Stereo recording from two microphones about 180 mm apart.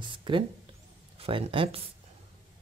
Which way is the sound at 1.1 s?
30° right (ahead or behind).